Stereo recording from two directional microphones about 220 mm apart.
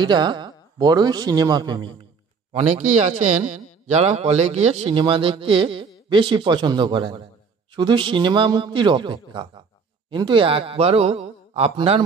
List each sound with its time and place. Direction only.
0.0 s a man's voice: 20° right (ahead or behind)
3.0 s a man's voice: 35° right (ahead or behind)